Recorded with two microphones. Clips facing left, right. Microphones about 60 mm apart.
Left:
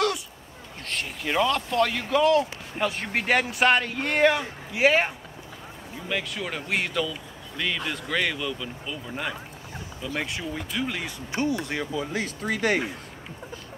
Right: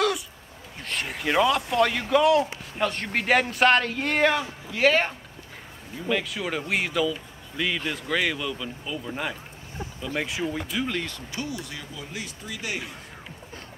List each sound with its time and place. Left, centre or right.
1.2 s a man's voice: centre
4.7 s speech: centre
6.0 s a man's voice: centre
11.3 s speech: left